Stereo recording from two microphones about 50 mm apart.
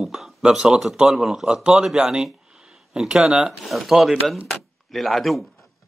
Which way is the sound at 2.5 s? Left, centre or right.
Centre.